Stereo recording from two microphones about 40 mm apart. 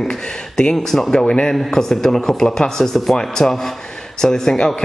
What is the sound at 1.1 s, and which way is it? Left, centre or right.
Speech, left.